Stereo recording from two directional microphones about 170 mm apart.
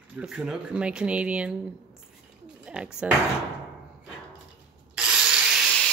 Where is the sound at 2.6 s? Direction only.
5° right (ahead or behind).